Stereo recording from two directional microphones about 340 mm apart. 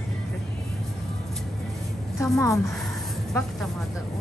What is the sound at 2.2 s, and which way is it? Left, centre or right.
A woman's voice, centre.